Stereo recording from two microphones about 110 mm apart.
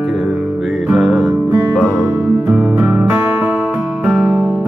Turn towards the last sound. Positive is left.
turn(degrees=-5)  # may be behind; listen again after turning